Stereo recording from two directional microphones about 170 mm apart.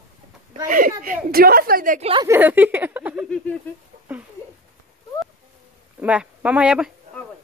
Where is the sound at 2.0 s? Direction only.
30° right (ahead or behind).